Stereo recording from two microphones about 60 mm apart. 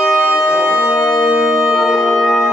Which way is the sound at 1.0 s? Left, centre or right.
Centre.